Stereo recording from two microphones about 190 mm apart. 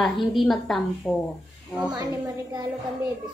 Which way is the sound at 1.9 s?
20° right (ahead or behind).